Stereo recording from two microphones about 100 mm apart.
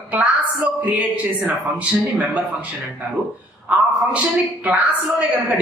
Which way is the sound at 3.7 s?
15° right (ahead or behind).